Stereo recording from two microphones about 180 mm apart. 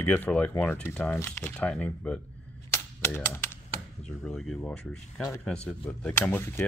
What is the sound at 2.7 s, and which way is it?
Typewriter, 15° left (ahead or behind).